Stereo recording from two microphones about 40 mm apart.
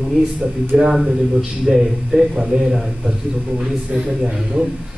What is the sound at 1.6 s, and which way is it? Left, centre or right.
Speech, centre.